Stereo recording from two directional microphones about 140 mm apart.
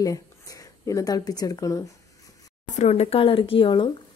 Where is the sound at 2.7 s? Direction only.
55° left (ahead or behind); by 3.9 s 35° left (ahead or behind).